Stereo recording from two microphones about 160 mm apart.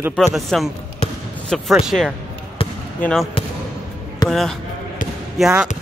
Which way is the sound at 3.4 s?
35° left (ahead or behind).